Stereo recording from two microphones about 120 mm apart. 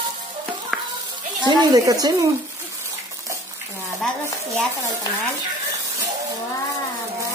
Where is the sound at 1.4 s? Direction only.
35° right (ahead or behind).